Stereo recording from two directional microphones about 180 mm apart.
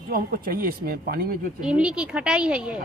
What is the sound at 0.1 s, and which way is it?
Speech, 55° right (ahead or behind).